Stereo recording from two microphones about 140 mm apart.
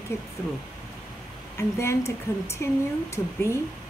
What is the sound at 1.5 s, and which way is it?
A woman's voice, 20° left (ahead or behind).